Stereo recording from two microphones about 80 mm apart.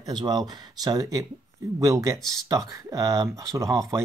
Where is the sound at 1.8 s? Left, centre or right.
Right.